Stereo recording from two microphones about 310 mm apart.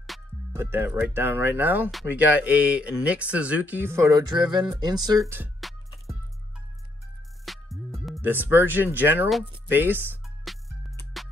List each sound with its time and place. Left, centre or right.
0.0 s speech: centre
5.2 s music: centre
7.4 s speech: centre
10.4 s music: centre